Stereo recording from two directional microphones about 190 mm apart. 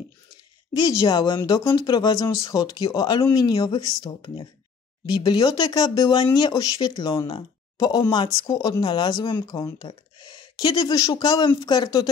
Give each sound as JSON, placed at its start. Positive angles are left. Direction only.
{"t": 0.7, "sound": "speech", "side_deg": 20}